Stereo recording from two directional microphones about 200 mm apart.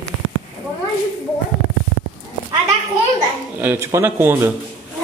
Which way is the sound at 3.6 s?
10° right (ahead or behind).